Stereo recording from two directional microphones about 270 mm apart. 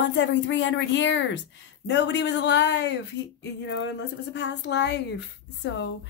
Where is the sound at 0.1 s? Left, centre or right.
Left.